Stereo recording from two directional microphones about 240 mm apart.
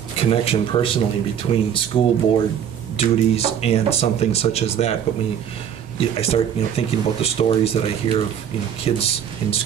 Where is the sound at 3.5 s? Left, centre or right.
Left.